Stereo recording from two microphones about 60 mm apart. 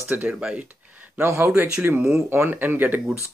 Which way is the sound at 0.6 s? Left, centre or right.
Right.